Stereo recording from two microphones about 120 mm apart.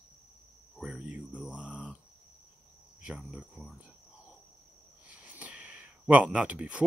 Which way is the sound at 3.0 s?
5° right (ahead or behind).